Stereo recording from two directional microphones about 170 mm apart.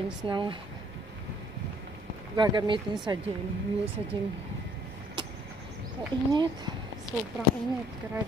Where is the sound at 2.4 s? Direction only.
25° right (ahead or behind).